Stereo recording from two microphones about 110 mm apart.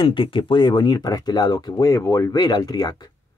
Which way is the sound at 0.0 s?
50° left (ahead or behind).